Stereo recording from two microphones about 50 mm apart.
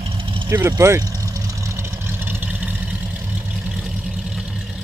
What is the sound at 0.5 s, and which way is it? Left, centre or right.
Speech, right.